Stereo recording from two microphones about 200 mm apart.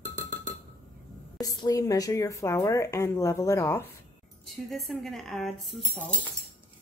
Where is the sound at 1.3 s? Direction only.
20° left (ahead or behind).